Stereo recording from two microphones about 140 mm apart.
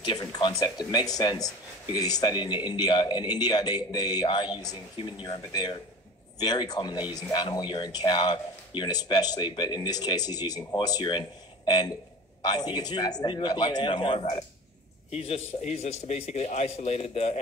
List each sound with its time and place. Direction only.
0.0 s a man's voice: 30° left (ahead or behind); by 17.4 s 45° left (ahead or behind)